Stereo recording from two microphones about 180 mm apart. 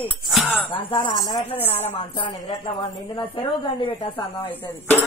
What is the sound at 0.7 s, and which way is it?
A woman's voice, 30° left (ahead or behind).